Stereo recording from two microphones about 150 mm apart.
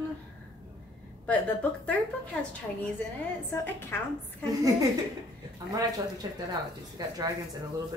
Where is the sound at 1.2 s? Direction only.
10° left (ahead or behind).